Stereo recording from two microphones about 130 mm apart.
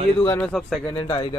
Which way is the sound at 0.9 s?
35° left (ahead or behind).